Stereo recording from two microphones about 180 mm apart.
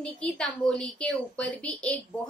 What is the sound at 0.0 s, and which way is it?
A woman's voice, 5° left (ahead or behind).